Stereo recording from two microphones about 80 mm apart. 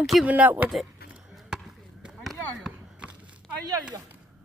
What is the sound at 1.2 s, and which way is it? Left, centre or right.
Chop, centre.